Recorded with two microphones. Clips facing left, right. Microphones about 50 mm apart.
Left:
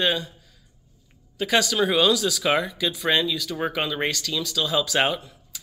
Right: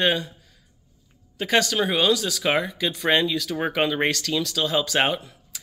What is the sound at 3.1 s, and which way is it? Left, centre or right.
Speech, right.